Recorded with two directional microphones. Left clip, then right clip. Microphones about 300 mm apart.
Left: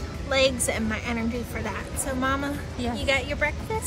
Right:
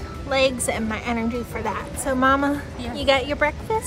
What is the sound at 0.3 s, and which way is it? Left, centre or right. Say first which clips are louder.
A woman's voice: right 2 dB; centre.